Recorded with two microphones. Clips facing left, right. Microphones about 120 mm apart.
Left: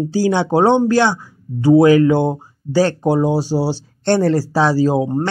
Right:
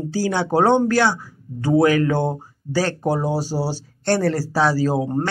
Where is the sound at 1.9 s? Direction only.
25° left (ahead or behind).